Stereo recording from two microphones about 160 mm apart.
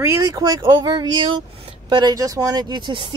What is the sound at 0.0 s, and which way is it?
Speech, 20° right (ahead or behind).